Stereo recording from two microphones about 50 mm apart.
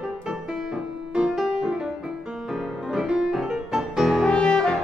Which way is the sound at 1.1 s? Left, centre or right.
Centre.